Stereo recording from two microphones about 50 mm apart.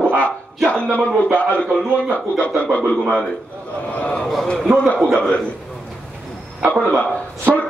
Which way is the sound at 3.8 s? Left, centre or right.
Left.